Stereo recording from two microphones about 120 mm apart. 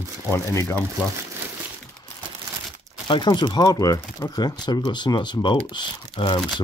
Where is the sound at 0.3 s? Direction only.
20° left (ahead or behind).